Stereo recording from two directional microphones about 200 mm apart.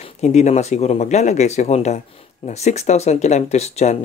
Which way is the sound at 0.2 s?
35° left (ahead or behind).